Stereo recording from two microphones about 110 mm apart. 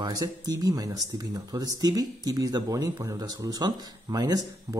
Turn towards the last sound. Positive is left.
turn(degrees=-35)  # may be behind; listen again after turning